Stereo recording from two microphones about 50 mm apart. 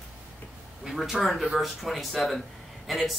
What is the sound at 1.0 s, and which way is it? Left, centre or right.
Speech, centre.